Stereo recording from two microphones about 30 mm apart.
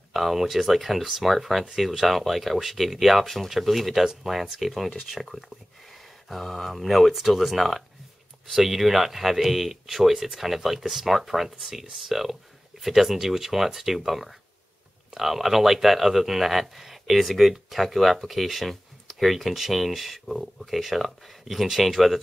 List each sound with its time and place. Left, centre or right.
0.1 s speech: centre
4.0 s speech: centre
4.6 s speech: centre
6.4 s speech: centre